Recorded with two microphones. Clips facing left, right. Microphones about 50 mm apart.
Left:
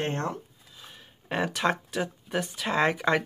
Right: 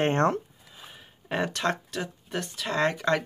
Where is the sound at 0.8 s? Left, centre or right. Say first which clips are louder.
Right 1 dB; centre.